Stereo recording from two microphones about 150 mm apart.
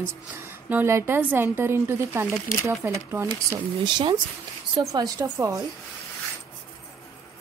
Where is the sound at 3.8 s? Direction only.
30° right (ahead or behind).